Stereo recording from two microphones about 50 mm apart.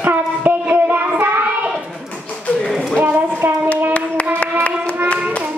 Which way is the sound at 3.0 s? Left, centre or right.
Right.